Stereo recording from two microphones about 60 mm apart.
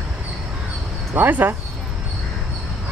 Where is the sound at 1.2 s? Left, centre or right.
Right.